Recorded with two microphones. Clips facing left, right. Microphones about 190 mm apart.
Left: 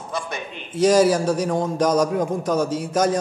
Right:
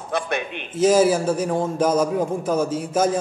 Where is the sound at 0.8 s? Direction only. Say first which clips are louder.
Even; 5° right (ahead or behind).